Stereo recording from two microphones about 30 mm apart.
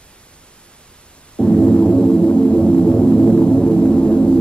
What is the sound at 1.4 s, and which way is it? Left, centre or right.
Gong, left.